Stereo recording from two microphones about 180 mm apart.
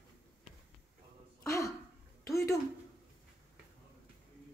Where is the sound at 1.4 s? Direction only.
15° left (ahead or behind).